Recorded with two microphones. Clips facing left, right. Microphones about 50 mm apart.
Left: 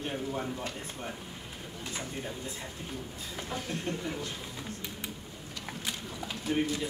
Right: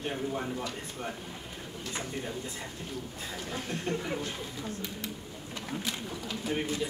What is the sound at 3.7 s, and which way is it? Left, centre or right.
Speech, right.